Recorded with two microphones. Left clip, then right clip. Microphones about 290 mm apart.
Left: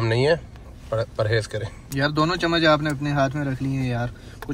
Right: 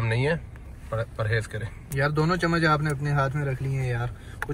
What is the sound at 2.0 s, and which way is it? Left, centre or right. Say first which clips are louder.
Speech: left 3 dB; left.